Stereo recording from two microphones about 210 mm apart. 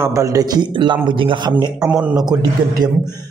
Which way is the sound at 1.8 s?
5° right (ahead or behind).